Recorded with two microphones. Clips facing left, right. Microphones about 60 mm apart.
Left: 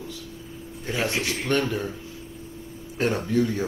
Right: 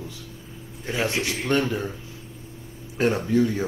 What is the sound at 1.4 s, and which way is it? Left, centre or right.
Speech, centre.